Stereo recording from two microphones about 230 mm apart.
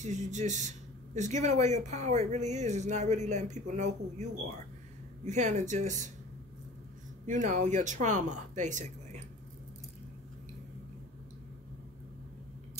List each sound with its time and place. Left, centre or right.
0.0 s speech: right
5.2 s speech: right
7.2 s speech: right